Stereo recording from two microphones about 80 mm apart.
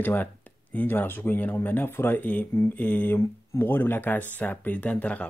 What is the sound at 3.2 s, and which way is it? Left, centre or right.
Speech, left.